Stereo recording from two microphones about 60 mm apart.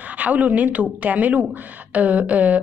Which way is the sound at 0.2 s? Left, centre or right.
Right.